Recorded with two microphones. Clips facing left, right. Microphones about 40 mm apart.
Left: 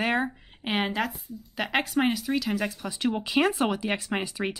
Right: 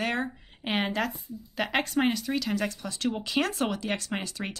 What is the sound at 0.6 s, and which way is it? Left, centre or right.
Speech, centre.